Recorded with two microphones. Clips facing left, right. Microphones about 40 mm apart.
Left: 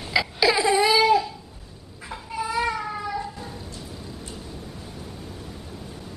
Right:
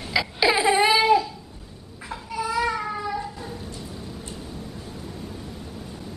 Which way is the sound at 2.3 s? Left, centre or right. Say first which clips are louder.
Right 1 dB; centre.